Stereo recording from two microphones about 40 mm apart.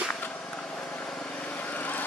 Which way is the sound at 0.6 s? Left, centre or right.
Left.